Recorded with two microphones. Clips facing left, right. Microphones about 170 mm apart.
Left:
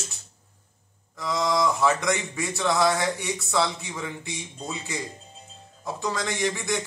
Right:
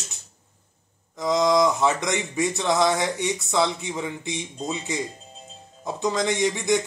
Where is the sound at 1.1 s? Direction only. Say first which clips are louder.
Right 5 dB; 20° right (ahead or behind).